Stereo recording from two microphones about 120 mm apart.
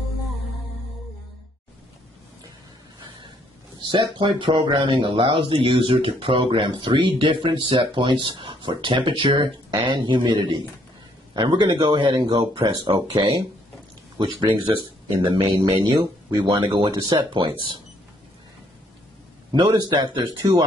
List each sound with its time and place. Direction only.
3.9 s speech: 40° right (ahead or behind)
13.1 s speech: 50° right (ahead or behind)
14.1 s speech: 40° right (ahead or behind)
19.5 s speech: 40° right (ahead or behind)